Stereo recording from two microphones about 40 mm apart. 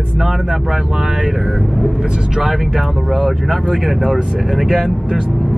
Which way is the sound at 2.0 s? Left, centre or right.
Right.